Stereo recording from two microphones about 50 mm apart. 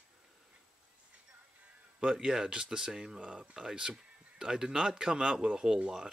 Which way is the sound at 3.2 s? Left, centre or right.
Right.